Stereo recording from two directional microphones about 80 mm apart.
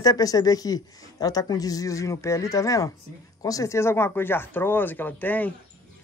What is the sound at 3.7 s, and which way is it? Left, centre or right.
Speech, left.